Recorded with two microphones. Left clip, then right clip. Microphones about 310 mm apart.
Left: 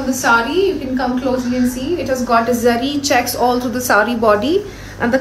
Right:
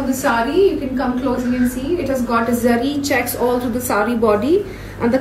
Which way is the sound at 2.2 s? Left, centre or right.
Centre.